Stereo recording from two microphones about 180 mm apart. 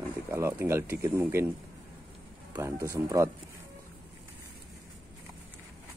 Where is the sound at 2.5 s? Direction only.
15° right (ahead or behind).